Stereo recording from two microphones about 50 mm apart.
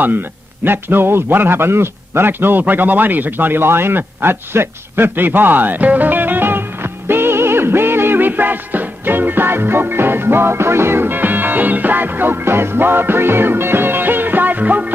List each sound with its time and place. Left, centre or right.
0.7 s a man's voice: right
8.3 s music: right